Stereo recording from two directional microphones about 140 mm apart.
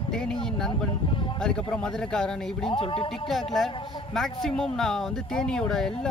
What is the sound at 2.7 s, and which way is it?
Speech, 40° left (ahead or behind).